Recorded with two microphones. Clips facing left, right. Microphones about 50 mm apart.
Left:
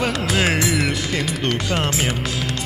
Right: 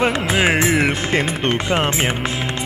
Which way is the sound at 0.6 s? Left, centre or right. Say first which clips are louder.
Right 4 dB; right.